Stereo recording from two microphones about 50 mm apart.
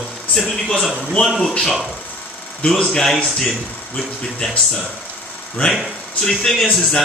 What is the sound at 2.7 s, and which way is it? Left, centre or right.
Speech, centre.